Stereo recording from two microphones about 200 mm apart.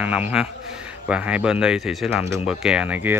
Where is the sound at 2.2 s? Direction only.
15° right (ahead or behind).